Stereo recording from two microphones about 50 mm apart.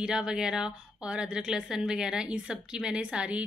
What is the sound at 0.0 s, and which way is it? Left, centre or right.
A woman's voice, centre.